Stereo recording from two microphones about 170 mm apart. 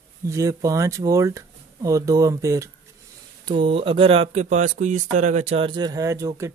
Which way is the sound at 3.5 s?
30° right (ahead or behind).